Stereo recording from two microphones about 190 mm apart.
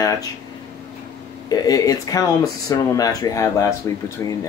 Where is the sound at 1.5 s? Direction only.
20° left (ahead or behind).